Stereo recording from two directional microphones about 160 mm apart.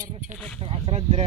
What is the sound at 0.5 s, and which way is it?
Speech, 35° right (ahead or behind).